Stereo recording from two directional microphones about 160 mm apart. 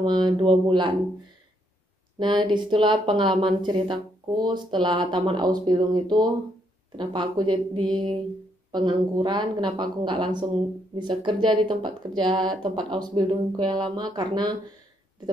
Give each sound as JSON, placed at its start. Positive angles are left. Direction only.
{"t": 0.0, "sound": "speech", "side_deg": -30}
{"t": 2.1, "sound": "speech", "side_deg": -30}